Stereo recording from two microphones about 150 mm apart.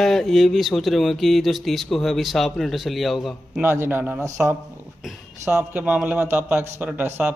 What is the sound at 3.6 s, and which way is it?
A man's voice, 15° right (ahead or behind).